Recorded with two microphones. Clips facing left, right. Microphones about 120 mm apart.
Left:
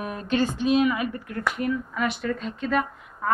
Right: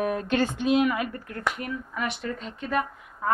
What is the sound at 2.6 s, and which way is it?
Speech, 20° right (ahead or behind).